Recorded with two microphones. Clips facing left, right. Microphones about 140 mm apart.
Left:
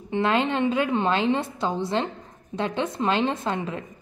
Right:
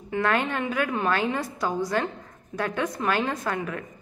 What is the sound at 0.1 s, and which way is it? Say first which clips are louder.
A woman's voice: left 2 dB; 20° left (ahead or behind).